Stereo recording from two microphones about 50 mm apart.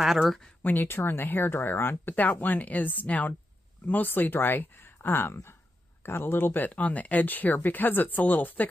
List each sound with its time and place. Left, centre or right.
0.0 s speech: centre
0.6 s speech: left